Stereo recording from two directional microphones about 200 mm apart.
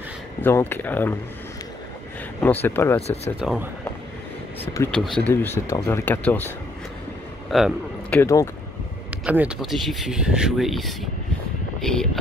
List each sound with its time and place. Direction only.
0.4 s speech: 10° left (ahead or behind)
2.4 s speech: 10° left (ahead or behind)
3.3 s speech: 5° right (ahead or behind)
4.7 s speech: 10° left (ahead or behind)
7.4 s a sound: centre (ahead or behind)
8.2 s speech: 15° left (ahead or behind)
9.2 s speech: 5° right (ahead or behind)